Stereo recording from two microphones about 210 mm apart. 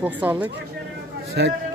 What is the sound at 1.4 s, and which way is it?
Speech, 50° right (ahead or behind).